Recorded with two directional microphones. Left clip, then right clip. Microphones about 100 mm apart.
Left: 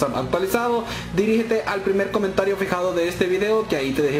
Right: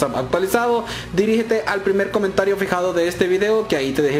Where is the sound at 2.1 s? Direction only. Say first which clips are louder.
Right 3 dB; 20° right (ahead or behind).